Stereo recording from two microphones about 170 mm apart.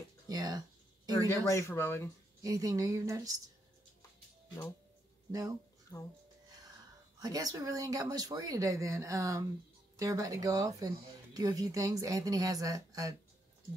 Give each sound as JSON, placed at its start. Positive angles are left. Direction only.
{"t": 0.3, "sound": "speech", "side_deg": -20}
{"t": 1.2, "sound": "speech", "side_deg": 15}
{"t": 2.4, "sound": "speech", "side_deg": -20}
{"t": 5.3, "sound": "speech", "side_deg": -20}
{"t": 5.9, "sound": "speech", "side_deg": 10}
{"t": 7.2, "sound": "speech", "side_deg": -20}